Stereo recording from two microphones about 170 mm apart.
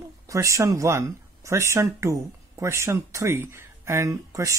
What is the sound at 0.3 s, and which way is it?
Speech, 20° right (ahead or behind).